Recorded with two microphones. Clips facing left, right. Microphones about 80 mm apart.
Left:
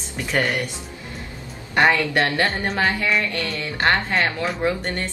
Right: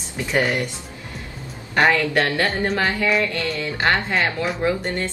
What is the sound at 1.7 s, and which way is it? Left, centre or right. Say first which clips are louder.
Speech: even; centre.